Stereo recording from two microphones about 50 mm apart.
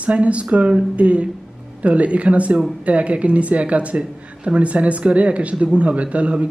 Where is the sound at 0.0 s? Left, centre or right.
Right.